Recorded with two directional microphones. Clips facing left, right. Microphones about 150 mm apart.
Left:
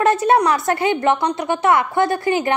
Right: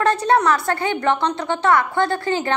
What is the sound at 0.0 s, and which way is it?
A woman's voice, 20° left (ahead or behind).